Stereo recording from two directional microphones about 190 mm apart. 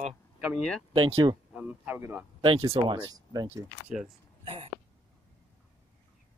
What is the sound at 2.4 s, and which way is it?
Speech, 30° right (ahead or behind).